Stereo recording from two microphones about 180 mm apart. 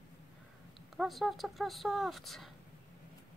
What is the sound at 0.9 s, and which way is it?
Speech, centre (ahead or behind).